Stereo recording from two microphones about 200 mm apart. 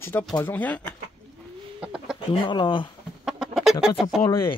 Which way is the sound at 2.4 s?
25° left (ahead or behind).